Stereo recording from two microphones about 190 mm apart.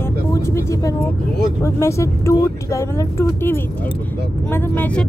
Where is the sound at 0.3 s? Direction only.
15° left (ahead or behind).